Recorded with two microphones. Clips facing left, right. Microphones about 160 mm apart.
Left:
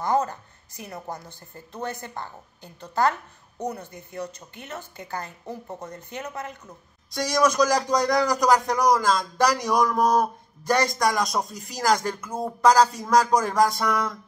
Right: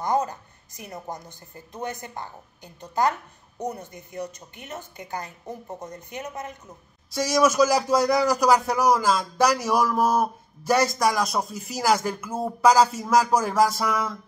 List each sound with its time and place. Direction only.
0.0 s a woman's voice: 15° right (ahead or behind)
7.1 s speech: 5° right (ahead or behind)